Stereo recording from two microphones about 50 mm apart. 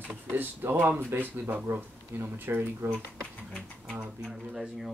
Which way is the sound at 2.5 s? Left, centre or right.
Right.